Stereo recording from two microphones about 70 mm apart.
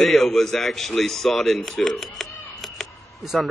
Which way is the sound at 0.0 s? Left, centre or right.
Centre.